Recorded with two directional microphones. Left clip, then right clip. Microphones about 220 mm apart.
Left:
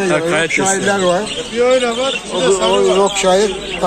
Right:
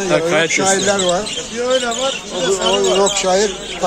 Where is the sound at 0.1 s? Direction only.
5° right (ahead or behind).